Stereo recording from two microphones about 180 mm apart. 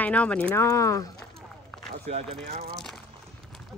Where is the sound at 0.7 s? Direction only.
20° left (ahead or behind).